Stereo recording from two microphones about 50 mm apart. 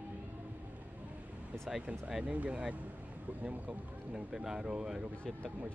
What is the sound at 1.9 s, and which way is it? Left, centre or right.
Speech, centre.